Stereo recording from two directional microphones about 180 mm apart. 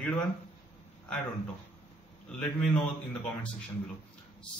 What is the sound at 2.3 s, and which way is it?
Speech, 5° left (ahead or behind).